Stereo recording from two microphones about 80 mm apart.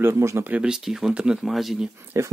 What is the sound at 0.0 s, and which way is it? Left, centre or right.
Speech, right.